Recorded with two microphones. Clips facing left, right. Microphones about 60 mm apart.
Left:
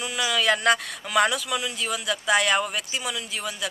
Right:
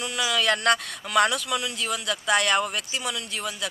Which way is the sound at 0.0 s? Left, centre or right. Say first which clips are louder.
Left 1 dB; centre.